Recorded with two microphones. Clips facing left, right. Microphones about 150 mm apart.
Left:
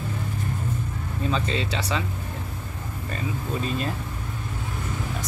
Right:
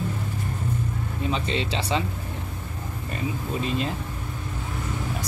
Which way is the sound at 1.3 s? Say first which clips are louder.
Even; 25° right (ahead or behind).